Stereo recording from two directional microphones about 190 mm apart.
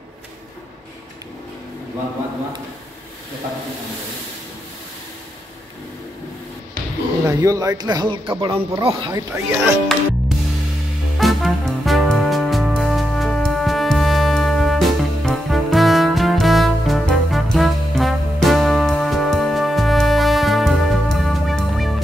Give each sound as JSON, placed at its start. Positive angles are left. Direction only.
{"t": 7.2, "sound": "speech", "side_deg": -15}
{"t": 9.3, "sound": "speech", "side_deg": -5}
{"t": 11.1, "sound": "music", "side_deg": 0}